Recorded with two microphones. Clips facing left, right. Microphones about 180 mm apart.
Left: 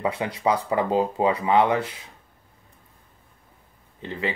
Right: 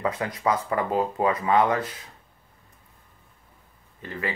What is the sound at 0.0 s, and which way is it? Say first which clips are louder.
Speech: left 2 dB; 15° left (ahead or behind).